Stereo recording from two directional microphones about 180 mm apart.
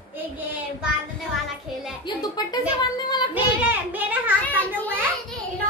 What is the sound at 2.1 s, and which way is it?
Speech, 25° left (ahead or behind).